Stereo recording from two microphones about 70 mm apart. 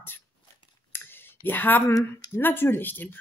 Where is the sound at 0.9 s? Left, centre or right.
Left.